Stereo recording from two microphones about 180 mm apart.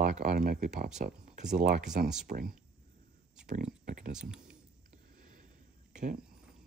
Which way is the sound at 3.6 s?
55° right (ahead or behind).